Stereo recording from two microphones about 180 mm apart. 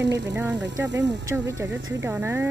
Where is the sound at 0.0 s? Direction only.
75° right (ahead or behind).